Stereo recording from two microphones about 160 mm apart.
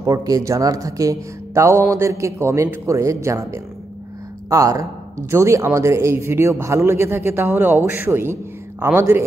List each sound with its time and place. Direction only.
0.0 s speech: 20° right (ahead or behind)